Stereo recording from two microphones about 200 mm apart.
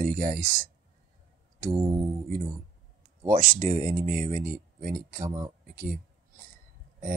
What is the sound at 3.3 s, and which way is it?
Speech, 40° right (ahead or behind).